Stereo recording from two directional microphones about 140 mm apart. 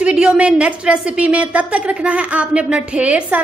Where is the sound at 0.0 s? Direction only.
5° right (ahead or behind).